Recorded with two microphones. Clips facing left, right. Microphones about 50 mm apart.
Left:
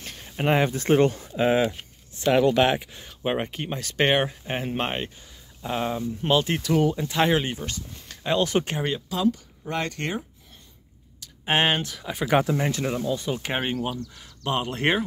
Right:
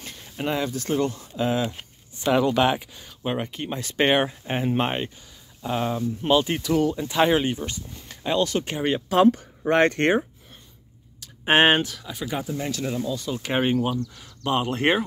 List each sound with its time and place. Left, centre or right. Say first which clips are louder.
0.5 s speech: left 5 dB; left
1.8 s a sound: even; centre
2.3 s speech: left 1 dB; centre
3.3 s speech: left 1 dB; centre
3.8 s speech: right 1 dB; centre
6.8 s speech: even; centre
7.1 s speech: right 2 dB; centre
9.1 s speech: right 9 dB; right
11.4 s speech: right 5 dB; centre
12.3 s speech: left 9 dB; left
12.5 s speech: left 2 dB; left
13.4 s speech: right 4 dB; centre